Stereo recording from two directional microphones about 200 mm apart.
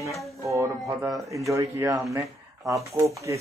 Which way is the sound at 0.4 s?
15° right (ahead or behind).